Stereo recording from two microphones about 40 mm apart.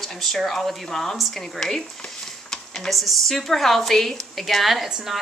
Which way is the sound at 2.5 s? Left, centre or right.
Centre.